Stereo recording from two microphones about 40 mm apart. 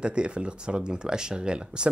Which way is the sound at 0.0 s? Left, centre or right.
Right.